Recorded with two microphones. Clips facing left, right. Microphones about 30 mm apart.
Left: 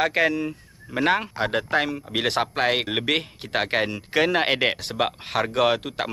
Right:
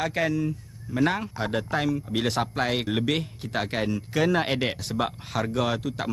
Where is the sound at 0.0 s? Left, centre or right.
Left.